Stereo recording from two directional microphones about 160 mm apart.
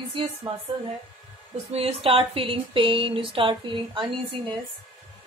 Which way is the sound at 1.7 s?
35° right (ahead or behind).